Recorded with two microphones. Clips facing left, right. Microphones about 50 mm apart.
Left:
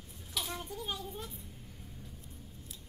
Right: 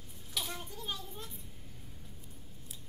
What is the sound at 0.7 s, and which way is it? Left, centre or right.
Speech, centre.